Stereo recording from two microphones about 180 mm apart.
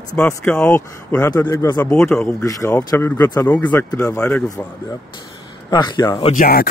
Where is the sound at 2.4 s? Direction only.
15° left (ahead or behind).